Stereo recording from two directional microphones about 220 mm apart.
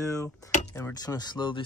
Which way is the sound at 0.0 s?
15° left (ahead or behind).